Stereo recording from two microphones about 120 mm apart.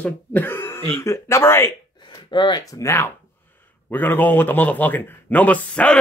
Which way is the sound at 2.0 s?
40° left (ahead or behind).